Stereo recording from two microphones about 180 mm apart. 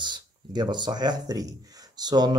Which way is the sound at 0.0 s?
25° right (ahead or behind).